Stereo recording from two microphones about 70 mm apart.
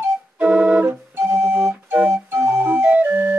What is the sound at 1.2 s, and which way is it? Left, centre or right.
Organ, right.